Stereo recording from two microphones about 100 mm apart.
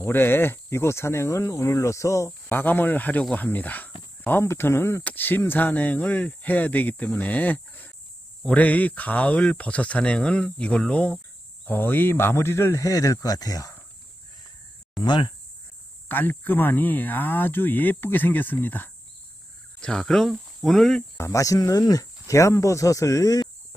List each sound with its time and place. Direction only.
0.0 s speech: 20° left (ahead or behind)
2.6 s speech: 20° left (ahead or behind); by 13.7 s 40° left (ahead or behind)
15.0 s speech: 50° left (ahead or behind)
16.1 s speech: 20° left (ahead or behind)
19.8 s speech: 5° left (ahead or behind)
21.2 s speech: 35° left (ahead or behind)